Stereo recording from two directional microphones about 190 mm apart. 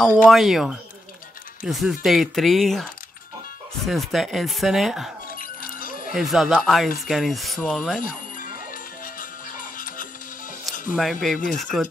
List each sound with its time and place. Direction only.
0.3 s speech: centre (ahead or behind)
5.3 s a sound: 50° left (ahead or behind)
6.1 s speech: centre (ahead or behind)
9.0 s music: 45° left (ahead or behind)
10.6 s speech: centre (ahead or behind)